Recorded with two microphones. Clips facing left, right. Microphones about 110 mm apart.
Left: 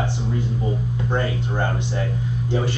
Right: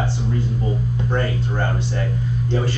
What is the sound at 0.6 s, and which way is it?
Speech, 15° left (ahead or behind).